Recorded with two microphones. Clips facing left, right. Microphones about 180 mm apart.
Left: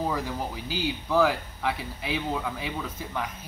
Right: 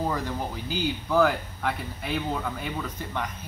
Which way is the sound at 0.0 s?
5° left (ahead or behind).